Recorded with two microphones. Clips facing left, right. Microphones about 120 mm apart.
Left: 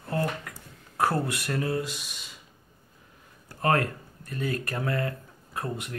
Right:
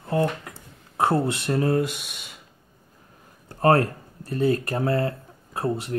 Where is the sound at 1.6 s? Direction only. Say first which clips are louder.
Right 8 dB; 55° right (ahead or behind).